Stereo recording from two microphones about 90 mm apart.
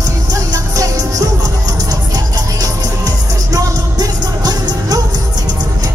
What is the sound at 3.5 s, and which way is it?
Music, 45° right (ahead or behind).